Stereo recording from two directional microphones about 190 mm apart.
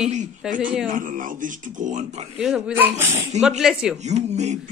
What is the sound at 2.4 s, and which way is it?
A woman's voice, 5° right (ahead or behind).